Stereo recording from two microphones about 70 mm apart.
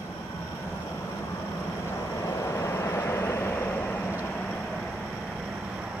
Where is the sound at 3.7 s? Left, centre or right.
Left.